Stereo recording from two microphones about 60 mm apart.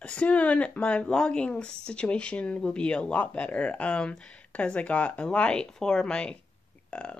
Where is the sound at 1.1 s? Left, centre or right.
Centre.